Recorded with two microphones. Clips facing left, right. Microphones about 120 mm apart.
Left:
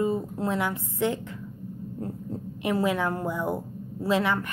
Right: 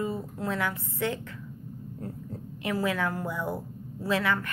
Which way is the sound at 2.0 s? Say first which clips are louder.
Left 5 dB; 25° left (ahead or behind).